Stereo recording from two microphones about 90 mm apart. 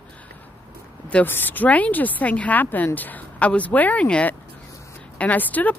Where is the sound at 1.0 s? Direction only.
20° left (ahead or behind).